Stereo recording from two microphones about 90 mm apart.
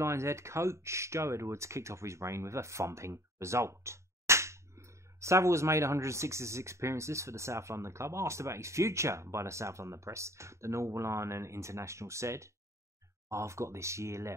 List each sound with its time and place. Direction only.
0.0 s speech: 30° right (ahead or behind)